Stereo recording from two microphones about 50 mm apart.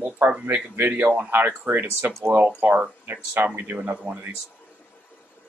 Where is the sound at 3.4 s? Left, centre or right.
Right.